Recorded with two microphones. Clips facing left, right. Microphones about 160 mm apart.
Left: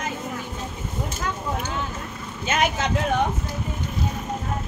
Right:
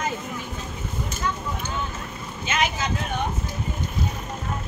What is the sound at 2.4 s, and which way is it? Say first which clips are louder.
Vehicle: left 3 dB; 50° left (ahead or behind).